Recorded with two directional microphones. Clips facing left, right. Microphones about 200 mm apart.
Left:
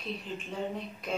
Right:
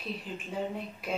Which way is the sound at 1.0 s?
10° right (ahead or behind).